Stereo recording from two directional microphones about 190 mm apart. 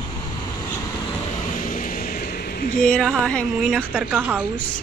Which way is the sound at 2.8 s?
5° left (ahead or behind).